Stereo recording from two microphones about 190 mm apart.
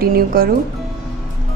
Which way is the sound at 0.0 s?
50° right (ahead or behind).